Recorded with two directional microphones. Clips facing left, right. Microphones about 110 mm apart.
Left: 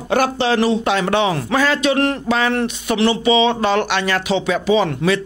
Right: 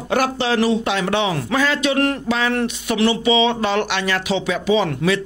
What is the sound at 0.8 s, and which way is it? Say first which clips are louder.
Speech: left 3 dB; 40° left (ahead or behind).